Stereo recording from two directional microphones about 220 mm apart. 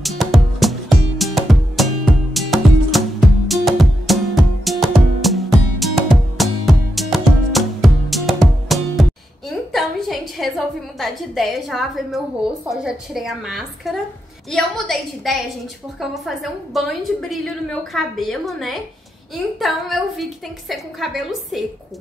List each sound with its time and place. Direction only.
0.0 s music: centre (ahead or behind)
9.5 s a sound: centre (ahead or behind)
11.0 s a woman's voice: centre (ahead or behind)